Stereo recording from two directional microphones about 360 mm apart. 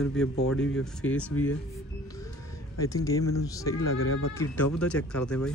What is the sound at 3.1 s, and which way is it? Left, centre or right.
Speech, centre.